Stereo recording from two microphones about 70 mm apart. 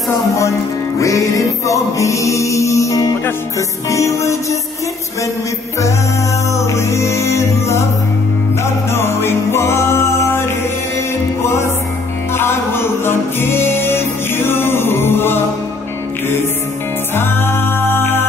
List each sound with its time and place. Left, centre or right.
1.0 s music: left
6.5 s music: left
8.9 s music: left
12.4 s music: left
17.1 s music: left